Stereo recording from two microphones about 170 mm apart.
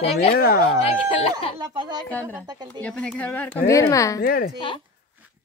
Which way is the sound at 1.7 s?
25° right (ahead or behind).